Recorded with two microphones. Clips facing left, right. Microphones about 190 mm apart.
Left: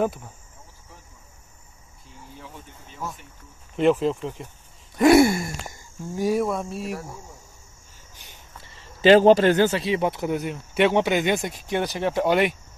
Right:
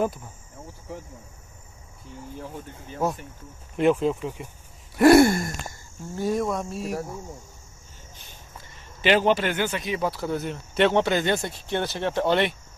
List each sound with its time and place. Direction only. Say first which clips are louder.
2.3 s speech: right 5 dB; 45° right (ahead or behind)
3.7 s cricket: left 1 dB; centre (ahead or behind)
9.0 s speech: left 7 dB; 40° left (ahead or behind); by 12.5 s 10° left (ahead or behind)